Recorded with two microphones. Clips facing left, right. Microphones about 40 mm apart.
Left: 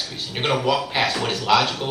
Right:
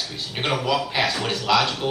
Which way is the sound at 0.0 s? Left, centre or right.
Centre.